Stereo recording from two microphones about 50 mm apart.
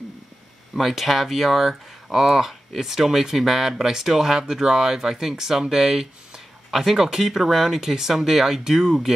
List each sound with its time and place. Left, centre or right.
0.7 s speech: centre